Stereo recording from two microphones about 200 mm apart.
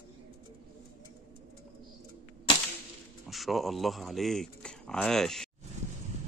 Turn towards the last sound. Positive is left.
turn(degrees=0)  # may be behind; listen again after turning